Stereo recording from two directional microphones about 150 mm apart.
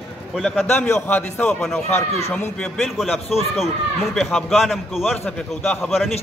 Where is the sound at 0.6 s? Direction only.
15° left (ahead or behind).